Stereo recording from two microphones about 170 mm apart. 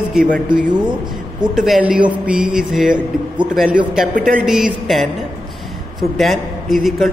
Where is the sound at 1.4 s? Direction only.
5° right (ahead or behind).